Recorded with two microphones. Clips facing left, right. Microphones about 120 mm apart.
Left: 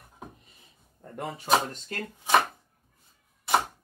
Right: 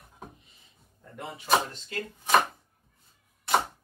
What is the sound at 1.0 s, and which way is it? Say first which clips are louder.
Speech: left 4 dB; 45° left (ahead or behind).